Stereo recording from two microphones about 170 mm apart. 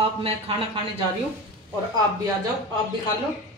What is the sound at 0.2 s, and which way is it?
Speech, 35° right (ahead or behind).